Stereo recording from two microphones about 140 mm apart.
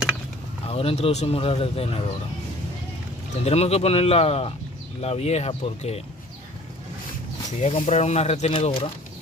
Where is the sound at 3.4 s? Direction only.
50° left (ahead or behind).